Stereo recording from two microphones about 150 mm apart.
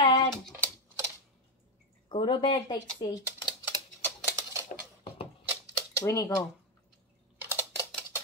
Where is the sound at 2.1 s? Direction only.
35° left (ahead or behind).